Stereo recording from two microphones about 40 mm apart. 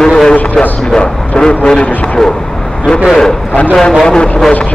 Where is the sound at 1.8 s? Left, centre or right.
Left.